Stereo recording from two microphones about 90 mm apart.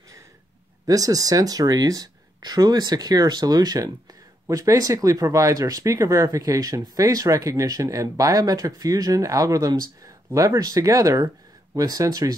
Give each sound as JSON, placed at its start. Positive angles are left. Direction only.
{"t": 0.8, "sound": "speech", "side_deg": -40}